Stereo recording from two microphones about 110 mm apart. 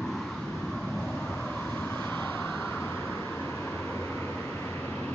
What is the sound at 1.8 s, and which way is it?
Vehicle, 20° left (ahead or behind).